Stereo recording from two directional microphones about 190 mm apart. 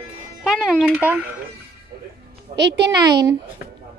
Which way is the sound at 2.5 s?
65° right (ahead or behind).